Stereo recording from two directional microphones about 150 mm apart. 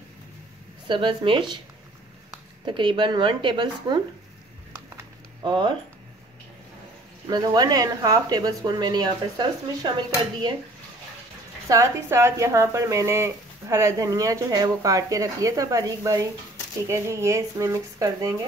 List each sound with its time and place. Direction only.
0.8 s speech: 35° right (ahead or behind)
2.6 s speech: 35° right (ahead or behind)
5.4 s speech: 30° right (ahead or behind)
7.2 s speech: 25° right (ahead or behind)
11.7 s speech: 20° right (ahead or behind)